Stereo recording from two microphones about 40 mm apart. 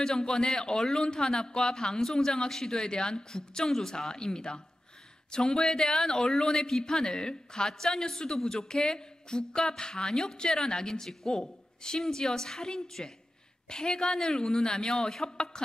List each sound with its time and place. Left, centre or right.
0.0 s speech: centre